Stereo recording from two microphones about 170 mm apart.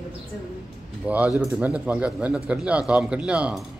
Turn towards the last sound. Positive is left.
turn(degrees=-5)  # may be behind; listen again after turning